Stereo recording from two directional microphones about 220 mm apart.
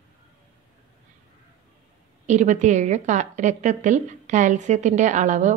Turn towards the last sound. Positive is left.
turn(degrees=-35)  # may be behind; listen again after turning